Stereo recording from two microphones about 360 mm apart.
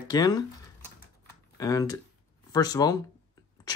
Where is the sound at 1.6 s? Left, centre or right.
Centre.